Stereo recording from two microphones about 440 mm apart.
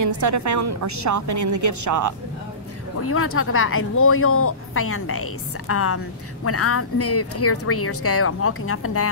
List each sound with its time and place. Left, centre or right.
0.0 s a woman's voice: right
3.0 s speech: left